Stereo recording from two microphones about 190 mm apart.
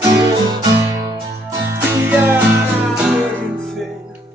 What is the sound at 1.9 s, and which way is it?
Music, 10° right (ahead or behind).